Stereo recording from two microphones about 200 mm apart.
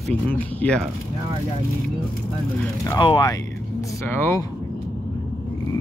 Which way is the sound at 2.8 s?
25° left (ahead or behind).